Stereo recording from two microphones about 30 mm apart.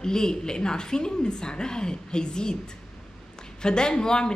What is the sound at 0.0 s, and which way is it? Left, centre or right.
A woman's voice, left.